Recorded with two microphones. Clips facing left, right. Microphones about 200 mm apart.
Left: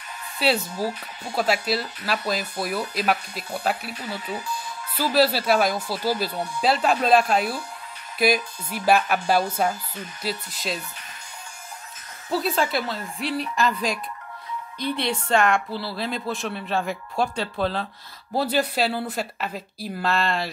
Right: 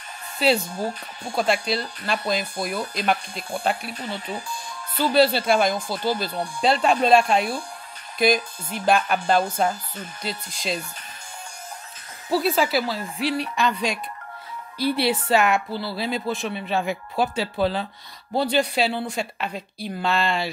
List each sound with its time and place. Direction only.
0.4 s speech: 5° left (ahead or behind)
8.6 s speech: 5° left (ahead or behind)
12.3 s speech: 5° right (ahead or behind)